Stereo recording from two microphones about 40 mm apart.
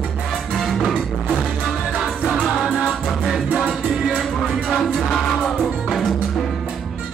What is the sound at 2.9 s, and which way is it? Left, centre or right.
Music, centre.